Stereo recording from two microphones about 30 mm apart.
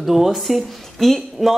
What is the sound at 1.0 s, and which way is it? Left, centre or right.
Speech, centre.